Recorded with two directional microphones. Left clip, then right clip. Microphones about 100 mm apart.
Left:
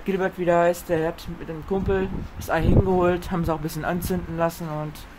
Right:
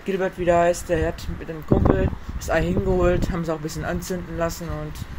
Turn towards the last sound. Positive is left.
turn(degrees=40)  # may be behind; listen again after turning